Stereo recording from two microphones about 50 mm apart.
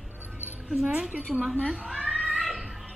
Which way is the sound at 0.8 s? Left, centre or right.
Right.